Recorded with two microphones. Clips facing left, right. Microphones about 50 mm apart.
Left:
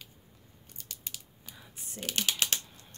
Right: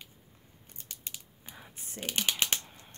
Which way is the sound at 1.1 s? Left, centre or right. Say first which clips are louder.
Even; right.